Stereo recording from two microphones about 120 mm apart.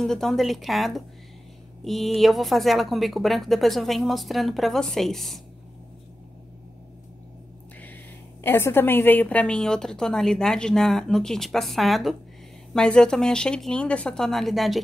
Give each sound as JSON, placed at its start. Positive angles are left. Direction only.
{"t": 0.0, "sound": "a woman's voice", "side_deg": 5}
{"t": 7.8, "sound": "a woman's voice", "side_deg": 15}